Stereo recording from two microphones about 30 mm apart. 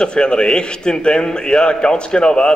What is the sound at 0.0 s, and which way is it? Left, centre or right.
A man's voice, left.